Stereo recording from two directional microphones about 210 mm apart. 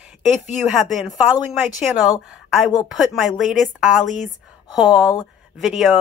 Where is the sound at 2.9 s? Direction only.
Centre (ahead or behind).